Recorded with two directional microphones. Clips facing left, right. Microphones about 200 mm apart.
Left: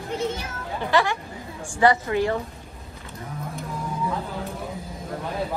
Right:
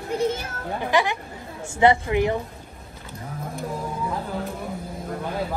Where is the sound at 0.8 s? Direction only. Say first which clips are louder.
Even; 15° right (ahead or behind).